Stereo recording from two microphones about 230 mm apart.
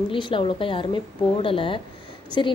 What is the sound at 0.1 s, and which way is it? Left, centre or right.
A woman's voice, left.